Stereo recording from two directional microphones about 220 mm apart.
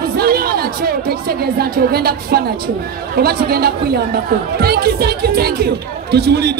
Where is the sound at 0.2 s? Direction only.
45° right (ahead or behind).